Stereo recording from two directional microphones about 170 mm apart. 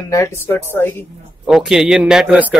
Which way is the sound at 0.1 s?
15° left (ahead or behind).